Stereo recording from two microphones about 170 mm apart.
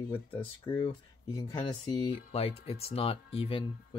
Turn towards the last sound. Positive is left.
turn(degrees=35)  # may be behind; listen again after turning